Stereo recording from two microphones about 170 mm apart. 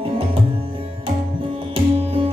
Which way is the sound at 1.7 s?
35° right (ahead or behind).